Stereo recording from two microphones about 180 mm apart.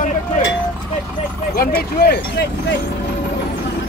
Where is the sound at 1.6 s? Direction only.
60° left (ahead or behind).